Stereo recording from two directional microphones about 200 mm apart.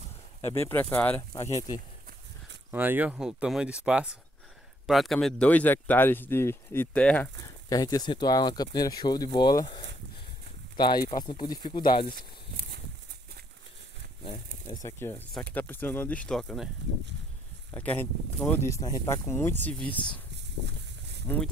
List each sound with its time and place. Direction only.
0.5 s speech: 10° left (ahead or behind)
2.7 s speech: 10° right (ahead or behind); by 7.2 s 5° left (ahead or behind)
7.7 s speech: 20° left (ahead or behind)
14.7 s speech: 15° left (ahead or behind)
17.7 s speech: 10° left (ahead or behind)